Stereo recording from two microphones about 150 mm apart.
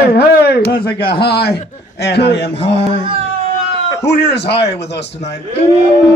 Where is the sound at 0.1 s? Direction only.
90° left.